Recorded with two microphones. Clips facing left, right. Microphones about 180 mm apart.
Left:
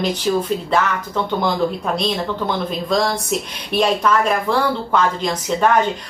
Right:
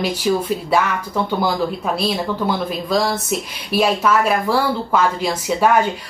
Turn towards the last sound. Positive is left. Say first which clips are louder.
# right 1 dB
turn(degrees=-10)  # may be behind; listen again after turning